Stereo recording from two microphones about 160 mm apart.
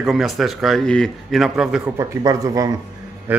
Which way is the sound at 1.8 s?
20° right (ahead or behind).